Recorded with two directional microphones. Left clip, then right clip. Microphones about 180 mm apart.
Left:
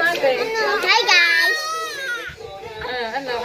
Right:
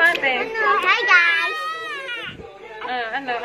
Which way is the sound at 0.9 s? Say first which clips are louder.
Left 2 dB; 25° left (ahead or behind).